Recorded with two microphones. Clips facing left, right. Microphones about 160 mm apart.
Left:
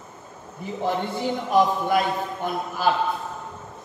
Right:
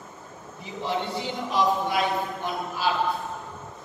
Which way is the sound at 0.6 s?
50° left (ahead or behind).